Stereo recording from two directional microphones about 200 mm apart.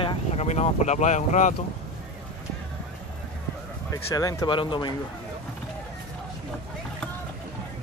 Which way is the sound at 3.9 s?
15° left (ahead or behind).